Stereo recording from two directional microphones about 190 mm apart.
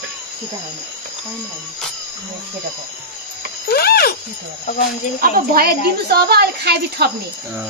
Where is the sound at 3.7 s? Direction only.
55° left (ahead or behind).